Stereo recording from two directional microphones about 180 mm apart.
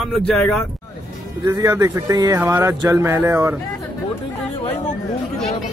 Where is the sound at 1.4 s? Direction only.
20° right (ahead or behind).